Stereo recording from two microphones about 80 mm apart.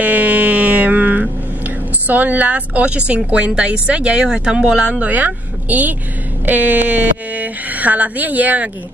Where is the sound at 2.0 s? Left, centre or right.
Centre.